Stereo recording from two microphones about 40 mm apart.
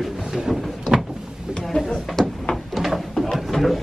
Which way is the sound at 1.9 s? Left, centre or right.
Centre.